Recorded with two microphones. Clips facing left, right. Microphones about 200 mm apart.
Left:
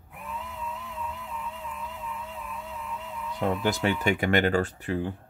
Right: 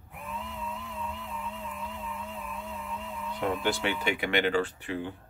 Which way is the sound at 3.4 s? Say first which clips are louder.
Left 3 dB; 40° left (ahead or behind).